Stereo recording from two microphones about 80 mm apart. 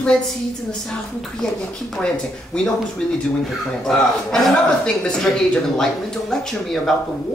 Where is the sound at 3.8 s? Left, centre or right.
Centre.